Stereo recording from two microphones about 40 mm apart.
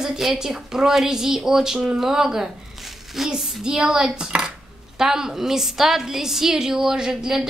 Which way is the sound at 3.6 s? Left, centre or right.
Centre.